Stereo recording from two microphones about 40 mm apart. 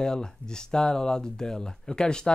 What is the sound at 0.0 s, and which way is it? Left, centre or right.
Speech, centre.